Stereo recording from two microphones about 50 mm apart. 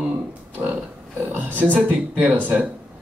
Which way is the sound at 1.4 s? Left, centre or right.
Right.